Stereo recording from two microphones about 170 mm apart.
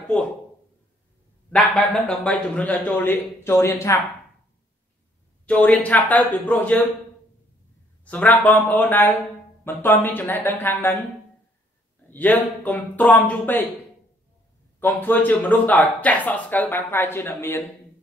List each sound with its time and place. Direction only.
0.1 s a man's voice: 5° left (ahead or behind)
1.5 s speech: 5° left (ahead or behind)
5.5 s speech: 10° left (ahead or behind)
8.0 s speech: 10° left (ahead or behind)
12.1 s speech: 10° left (ahead or behind)
14.8 s speech: 10° left (ahead or behind)